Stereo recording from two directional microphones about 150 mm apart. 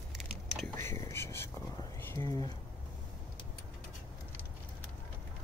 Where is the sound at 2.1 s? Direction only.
20° left (ahead or behind).